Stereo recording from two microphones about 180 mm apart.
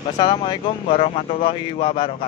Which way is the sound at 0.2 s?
30° left (ahead or behind).